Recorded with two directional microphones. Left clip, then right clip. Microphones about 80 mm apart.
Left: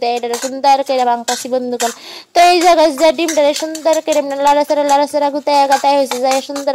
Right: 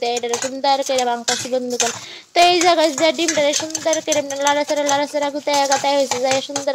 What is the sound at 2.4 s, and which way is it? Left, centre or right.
Speech, left.